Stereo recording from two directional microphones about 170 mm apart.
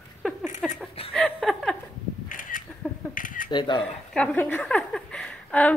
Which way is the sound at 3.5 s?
25° left (ahead or behind).